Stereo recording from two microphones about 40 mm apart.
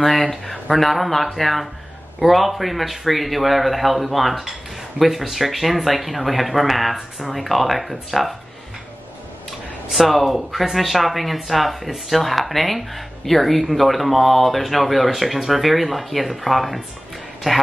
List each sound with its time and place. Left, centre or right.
0.7 s speech: centre
9.9 s speech: centre